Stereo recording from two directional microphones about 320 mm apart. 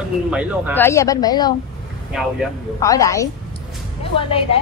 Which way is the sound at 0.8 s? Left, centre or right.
Centre.